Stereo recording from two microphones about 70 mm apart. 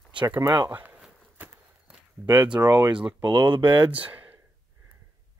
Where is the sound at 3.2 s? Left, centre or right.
Right.